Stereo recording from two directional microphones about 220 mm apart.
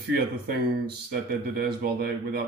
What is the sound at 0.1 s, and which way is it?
Speech, 45° right (ahead or behind).